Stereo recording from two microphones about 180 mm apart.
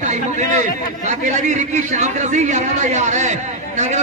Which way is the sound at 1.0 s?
40° right (ahead or behind).